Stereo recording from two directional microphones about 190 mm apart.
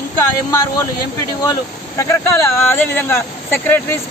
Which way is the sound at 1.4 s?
15° left (ahead or behind).